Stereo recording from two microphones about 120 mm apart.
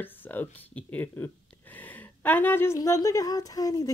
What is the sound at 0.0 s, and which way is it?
Speech, 15° left (ahead or behind).